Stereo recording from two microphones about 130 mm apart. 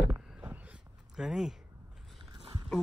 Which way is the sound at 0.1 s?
5° right (ahead or behind).